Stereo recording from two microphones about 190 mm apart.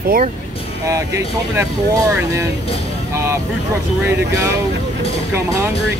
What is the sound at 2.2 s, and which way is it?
Speech, 15° right (ahead or behind).